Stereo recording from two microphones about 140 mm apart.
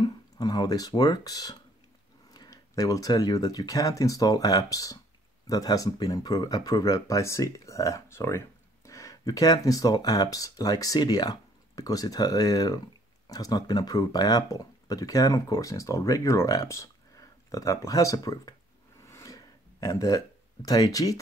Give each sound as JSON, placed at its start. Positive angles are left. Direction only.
{"t": 0.0, "sound": "speech", "side_deg": 30}
{"t": 19.0, "sound": "a sound", "side_deg": 20}
{"t": 20.6, "sound": "speech", "side_deg": 25}